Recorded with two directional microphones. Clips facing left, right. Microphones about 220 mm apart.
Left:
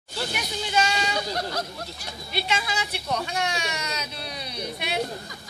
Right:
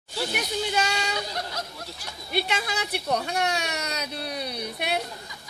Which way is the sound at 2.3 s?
55° right (ahead or behind).